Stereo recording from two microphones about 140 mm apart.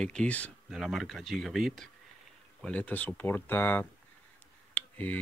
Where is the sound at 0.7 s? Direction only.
Centre (ahead or behind).